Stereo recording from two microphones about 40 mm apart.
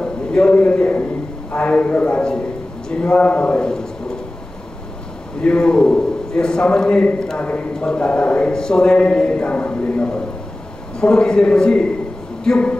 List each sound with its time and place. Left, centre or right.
0.0 s a man's voice: left
2.9 s a man's voice: left
5.4 s a man's voice: left
7.3 s a man's voice: left
9.5 s a man's voice: left
11.0 s a man's voice: centre